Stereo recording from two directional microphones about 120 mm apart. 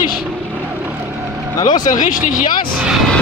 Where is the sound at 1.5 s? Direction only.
35° left (ahead or behind).